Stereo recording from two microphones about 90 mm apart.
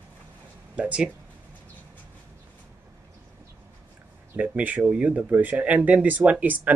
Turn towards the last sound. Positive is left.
turn(degrees=-15)  # may be behind; listen again after turning